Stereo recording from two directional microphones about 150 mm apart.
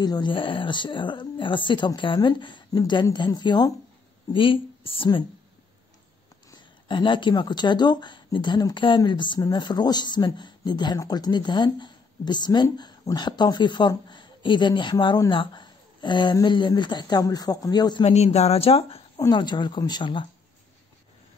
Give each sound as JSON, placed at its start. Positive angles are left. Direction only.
{"t": 0.0, "sound": "speech", "side_deg": 30}
{"t": 6.9, "sound": "speech", "side_deg": 35}
{"t": 18.0, "sound": "speech", "side_deg": 45}
{"t": 19.1, "sound": "speech", "side_deg": 25}